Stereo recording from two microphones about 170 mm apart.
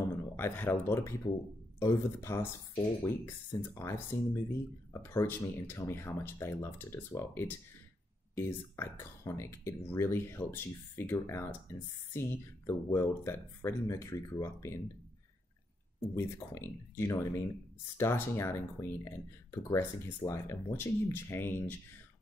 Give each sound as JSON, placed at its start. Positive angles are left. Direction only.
{"t": 0.1, "sound": "speech", "side_deg": 10}
{"t": 16.2, "sound": "speech", "side_deg": 15}